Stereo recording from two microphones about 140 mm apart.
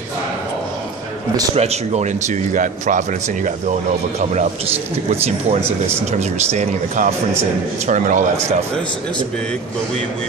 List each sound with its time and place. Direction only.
1.5 s speech: 50° right (ahead or behind); by 3.5 s 65° right (ahead or behind)
5.1 s speech: 45° right (ahead or behind)